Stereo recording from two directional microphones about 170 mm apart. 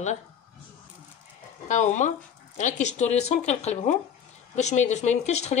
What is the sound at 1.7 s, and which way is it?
Speech, 45° left (ahead or behind).